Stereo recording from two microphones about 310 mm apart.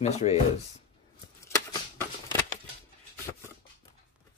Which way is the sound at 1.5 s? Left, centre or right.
Centre.